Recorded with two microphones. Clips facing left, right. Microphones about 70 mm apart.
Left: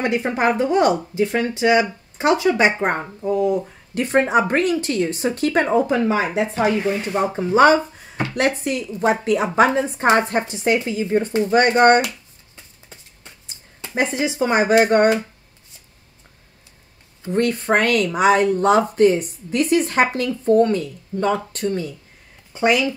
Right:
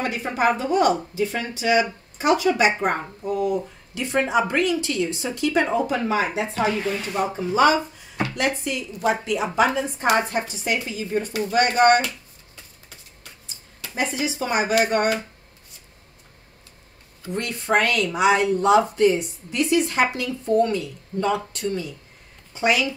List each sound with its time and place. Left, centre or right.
0.0 s speech: left
3.9 s speech: left
5.7 s speech: left
7.3 s speech: left
12.0 s a sound: left
13.7 s speech: left
17.4 s speech: left